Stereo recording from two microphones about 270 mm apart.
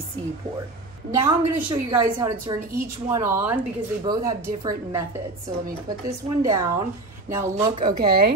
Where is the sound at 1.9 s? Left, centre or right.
Centre.